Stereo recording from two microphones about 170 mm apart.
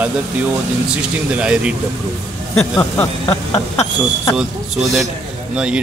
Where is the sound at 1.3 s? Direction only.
5° right (ahead or behind).